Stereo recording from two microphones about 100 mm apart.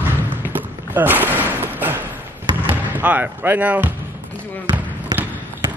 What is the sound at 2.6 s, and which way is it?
Speech, 15° right (ahead or behind).